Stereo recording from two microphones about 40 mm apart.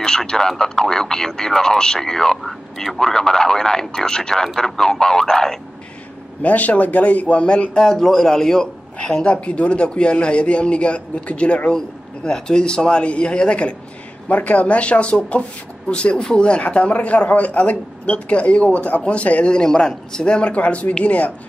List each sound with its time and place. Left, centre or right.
0.0 s speech: centre
6.4 s a man's voice: left
11.7 s a man's voice: left
14.3 s a man's voice: left
19.4 s speech: left
20.2 s a man's voice: left